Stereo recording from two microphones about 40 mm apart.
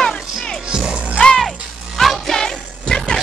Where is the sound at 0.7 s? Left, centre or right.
Centre.